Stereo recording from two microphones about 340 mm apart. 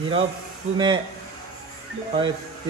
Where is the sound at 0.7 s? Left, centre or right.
Centre.